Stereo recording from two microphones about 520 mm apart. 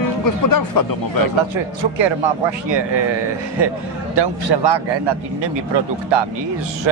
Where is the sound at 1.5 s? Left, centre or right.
Right.